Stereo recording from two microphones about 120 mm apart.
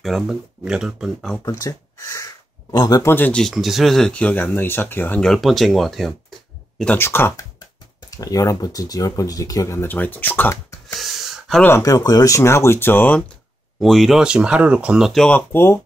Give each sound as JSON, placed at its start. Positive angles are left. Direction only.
{"t": 0.0, "sound": "speech", "side_deg": 0}
{"t": 1.4, "sound": "speech", "side_deg": 30}
{"t": 3.1, "sound": "speech", "side_deg": 15}
{"t": 6.8, "sound": "speech", "side_deg": 15}
{"t": 8.2, "sound": "speech", "side_deg": 30}
{"t": 11.0, "sound": "a sound", "side_deg": 0}
{"t": 11.8, "sound": "speech", "side_deg": 30}
{"t": 13.7, "sound": "speech", "side_deg": 0}
{"t": 15.2, "sound": "speech", "side_deg": 15}